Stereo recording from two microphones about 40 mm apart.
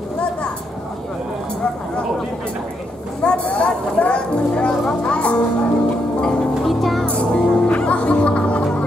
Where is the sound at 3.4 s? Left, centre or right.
Left.